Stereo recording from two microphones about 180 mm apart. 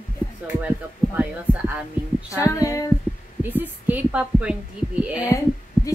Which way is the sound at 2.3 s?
15° left (ahead or behind).